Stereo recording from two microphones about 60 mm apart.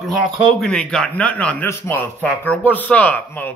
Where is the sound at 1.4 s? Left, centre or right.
Left.